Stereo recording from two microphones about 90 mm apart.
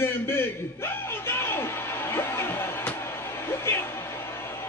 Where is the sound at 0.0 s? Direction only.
25° left (ahead or behind).